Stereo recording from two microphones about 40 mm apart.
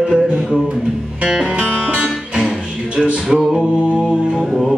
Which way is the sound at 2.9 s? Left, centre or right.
Right.